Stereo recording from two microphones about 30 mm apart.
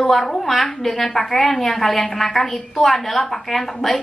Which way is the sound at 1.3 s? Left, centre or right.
Left.